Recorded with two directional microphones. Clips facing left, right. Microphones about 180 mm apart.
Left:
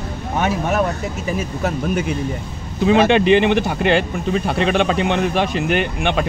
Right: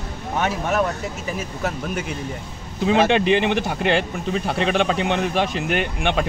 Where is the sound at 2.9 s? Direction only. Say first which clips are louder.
Left 4 dB; 65° left (ahead or behind).